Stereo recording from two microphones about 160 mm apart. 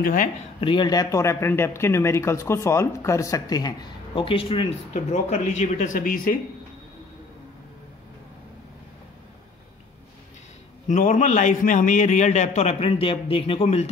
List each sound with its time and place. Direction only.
0.0 s speech: 55° left (ahead or behind)
0.6 s speech: 30° left (ahead or behind); by 6.3 s 60° left (ahead or behind)
10.9 s a man's voice: 50° left (ahead or behind)